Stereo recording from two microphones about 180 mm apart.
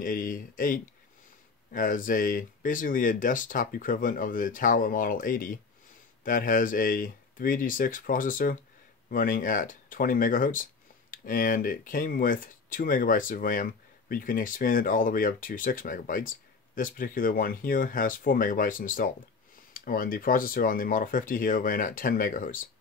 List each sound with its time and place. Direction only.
0.0 s speech: 50° left (ahead or behind)